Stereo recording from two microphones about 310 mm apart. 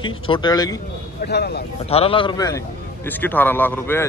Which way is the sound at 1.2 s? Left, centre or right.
Left.